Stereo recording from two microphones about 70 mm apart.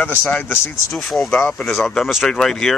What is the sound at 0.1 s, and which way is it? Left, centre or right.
Speech, left.